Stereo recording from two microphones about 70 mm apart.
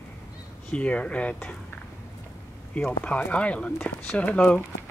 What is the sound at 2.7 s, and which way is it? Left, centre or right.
Speech, centre.